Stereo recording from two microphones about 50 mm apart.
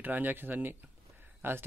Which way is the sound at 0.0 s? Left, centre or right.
Right.